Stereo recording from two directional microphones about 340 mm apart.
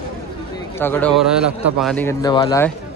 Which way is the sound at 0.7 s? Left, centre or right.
Centre.